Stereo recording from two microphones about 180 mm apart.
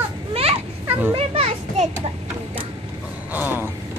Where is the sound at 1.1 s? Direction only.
35° right (ahead or behind).